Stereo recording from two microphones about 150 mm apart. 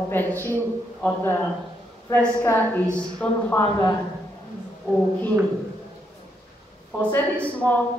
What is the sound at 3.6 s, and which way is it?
Speech, 25° left (ahead or behind).